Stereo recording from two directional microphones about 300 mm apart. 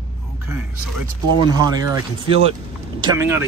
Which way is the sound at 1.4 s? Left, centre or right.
Centre.